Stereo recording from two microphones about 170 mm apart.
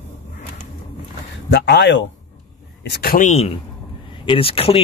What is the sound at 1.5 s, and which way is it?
Speech, 85° left.